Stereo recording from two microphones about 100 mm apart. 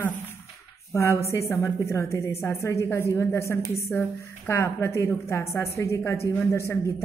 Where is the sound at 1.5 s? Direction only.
30° left (ahead or behind).